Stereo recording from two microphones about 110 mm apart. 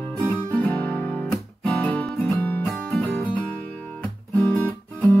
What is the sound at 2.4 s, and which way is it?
Music, 15° left (ahead or behind).